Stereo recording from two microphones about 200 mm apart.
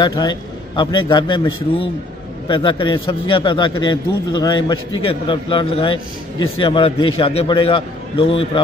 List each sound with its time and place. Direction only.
0.0 s a man's voice: 20° left (ahead or behind)